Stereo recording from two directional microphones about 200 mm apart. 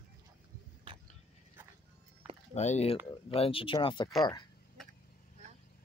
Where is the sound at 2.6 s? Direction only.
35° left (ahead or behind).